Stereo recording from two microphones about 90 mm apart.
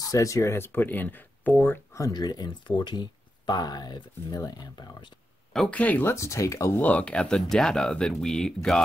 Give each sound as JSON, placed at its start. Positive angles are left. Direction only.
{"t": 0.0, "sound": "speech", "side_deg": 40}
{"t": 2.0, "sound": "speech", "side_deg": 45}
{"t": 5.7, "sound": "speech", "side_deg": 15}
{"t": 6.1, "sound": "speech", "side_deg": 35}
{"t": 6.8, "sound": "speech", "side_deg": 15}